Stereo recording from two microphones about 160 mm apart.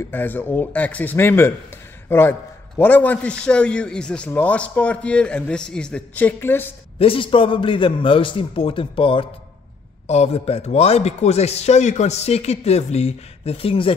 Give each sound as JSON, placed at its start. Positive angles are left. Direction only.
{"t": 0.0, "sound": "a man's voice", "side_deg": 15}
{"t": 7.0, "sound": "a man's voice", "side_deg": 35}